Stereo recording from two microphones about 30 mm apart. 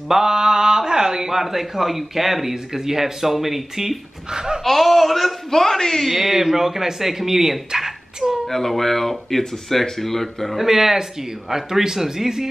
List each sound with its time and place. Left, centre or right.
0.1 s mantra: right
1.3 s speech: centre
4.3 s speech: right
4.6 s speech: centre
5.5 s speech: centre
6.0 s speech: centre
8.5 s speech: centre
10.6 s speech: centre